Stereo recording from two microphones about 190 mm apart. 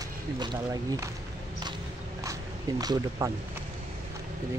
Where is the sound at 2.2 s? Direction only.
15° right (ahead or behind).